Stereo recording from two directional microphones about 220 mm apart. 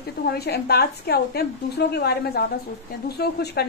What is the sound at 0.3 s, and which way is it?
Speech, 45° left (ahead or behind).